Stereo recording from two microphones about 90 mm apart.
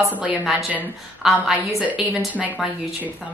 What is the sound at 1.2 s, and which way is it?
Speech, 5° right (ahead or behind).